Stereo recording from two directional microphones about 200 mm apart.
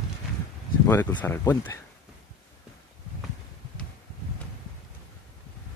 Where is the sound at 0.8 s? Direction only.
10° left (ahead or behind).